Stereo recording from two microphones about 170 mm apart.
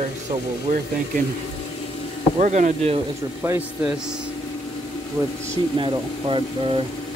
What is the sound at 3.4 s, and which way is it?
Speech, 15° right (ahead or behind).